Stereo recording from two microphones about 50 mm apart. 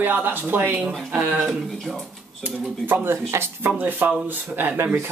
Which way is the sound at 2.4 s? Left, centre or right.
Right.